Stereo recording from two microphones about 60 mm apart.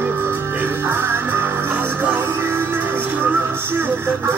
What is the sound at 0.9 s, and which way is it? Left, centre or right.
Music, right.